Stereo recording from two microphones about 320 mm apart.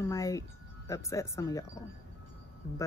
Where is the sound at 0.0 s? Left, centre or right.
Centre.